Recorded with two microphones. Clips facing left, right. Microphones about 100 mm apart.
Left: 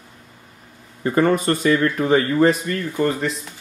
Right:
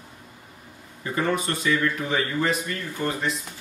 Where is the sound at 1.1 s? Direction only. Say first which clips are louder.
Left 7 dB; 45° left (ahead or behind).